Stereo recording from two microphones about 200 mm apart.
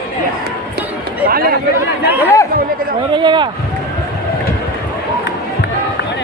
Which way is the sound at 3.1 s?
25° right (ahead or behind).